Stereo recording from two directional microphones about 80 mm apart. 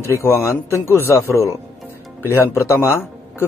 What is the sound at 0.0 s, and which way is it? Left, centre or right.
A man's voice, left.